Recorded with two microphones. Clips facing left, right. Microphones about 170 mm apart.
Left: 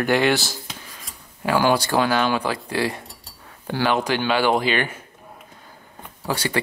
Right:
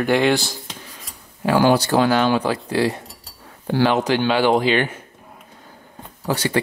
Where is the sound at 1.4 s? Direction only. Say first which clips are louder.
Right 3 dB; 15° right (ahead or behind).